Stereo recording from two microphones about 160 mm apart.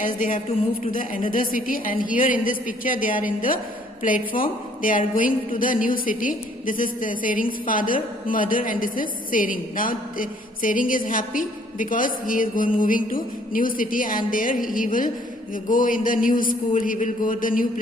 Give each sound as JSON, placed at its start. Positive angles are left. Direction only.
{"t": 0.0, "sound": "a woman's voice", "side_deg": 55}